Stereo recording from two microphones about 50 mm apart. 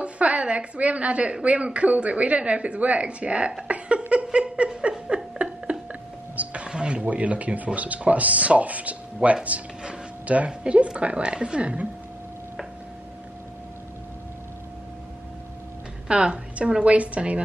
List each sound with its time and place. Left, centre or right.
0.0 s speech: right
3.6 s a sound: right
4.1 s speech: right
4.9 s a sound: centre
6.3 s speech: right
16.1 s speech: right